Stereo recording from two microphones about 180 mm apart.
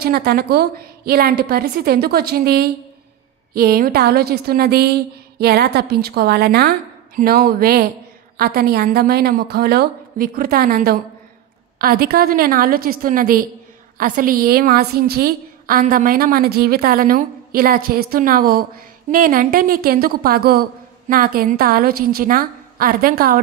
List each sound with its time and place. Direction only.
0.0 s a woman's voice: 60° right (ahead or behind)